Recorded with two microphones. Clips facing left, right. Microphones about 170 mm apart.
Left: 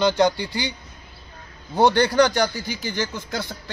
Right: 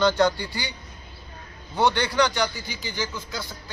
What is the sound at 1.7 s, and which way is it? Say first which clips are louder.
A man's voice: left 5 dB; 45° left (ahead or behind).